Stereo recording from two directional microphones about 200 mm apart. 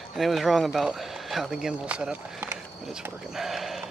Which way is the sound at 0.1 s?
Centre (ahead or behind).